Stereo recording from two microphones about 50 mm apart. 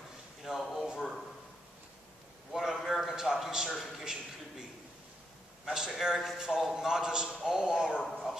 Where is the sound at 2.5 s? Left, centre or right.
Centre.